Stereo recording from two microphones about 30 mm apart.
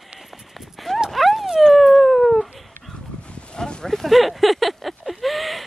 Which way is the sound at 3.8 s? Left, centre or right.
Centre.